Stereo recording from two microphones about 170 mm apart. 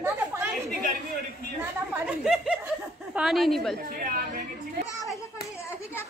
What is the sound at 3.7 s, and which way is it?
Chatter, 55° right (ahead or behind).